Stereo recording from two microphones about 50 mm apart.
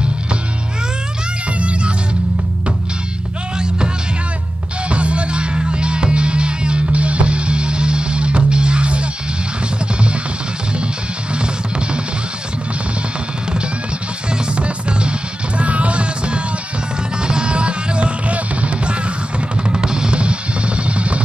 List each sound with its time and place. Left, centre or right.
1.6 s music: right
3.5 s music: centre
11.3 s music: right
14.3 s music: right